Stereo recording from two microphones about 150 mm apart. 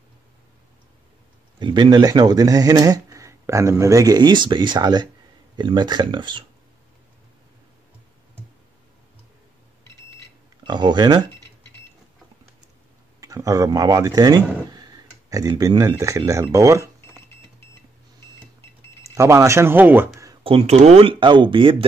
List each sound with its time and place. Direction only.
1.6 s speech: 30° right (ahead or behind)
10.6 s speech: 30° right (ahead or behind)
13.2 s a man's voice: 20° right (ahead or behind)
19.0 s speech: 20° right (ahead or behind)
20.4 s speech: 40° right (ahead or behind)